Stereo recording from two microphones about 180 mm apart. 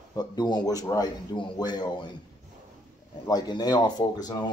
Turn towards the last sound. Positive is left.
turn(degrees=20)  # may be behind; listen again after turning